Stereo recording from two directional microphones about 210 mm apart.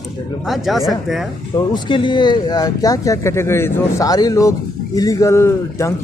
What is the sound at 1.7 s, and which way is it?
Speech, 20° left (ahead or behind).